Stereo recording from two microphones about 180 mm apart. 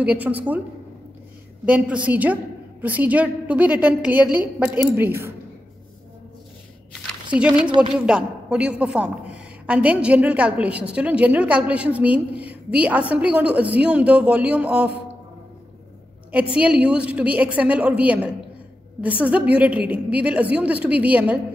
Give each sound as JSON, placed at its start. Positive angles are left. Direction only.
{"t": 0.0, "sound": "a woman's voice", "side_deg": -10}
{"t": 1.7, "sound": "a woman's voice", "side_deg": -5}
{"t": 7.5, "sound": "speech", "side_deg": -25}
{"t": 8.0, "sound": "a woman's voice", "side_deg": -5}
{"t": 16.5, "sound": "a woman's voice", "side_deg": -5}